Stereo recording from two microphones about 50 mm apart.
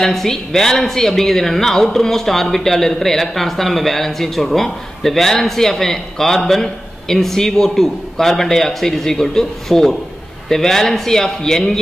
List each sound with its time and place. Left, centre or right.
0.0 s speech: centre